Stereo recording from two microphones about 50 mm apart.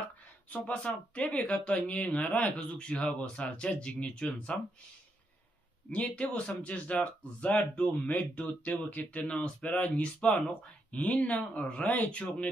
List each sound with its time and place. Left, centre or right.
0.7 s speech: left
5.9 s speech: left